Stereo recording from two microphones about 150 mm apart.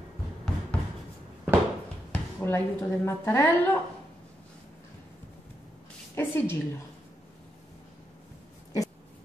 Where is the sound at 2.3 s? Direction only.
15° left (ahead or behind).